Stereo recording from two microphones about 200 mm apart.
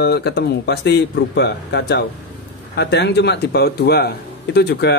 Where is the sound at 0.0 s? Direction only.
55° left (ahead or behind).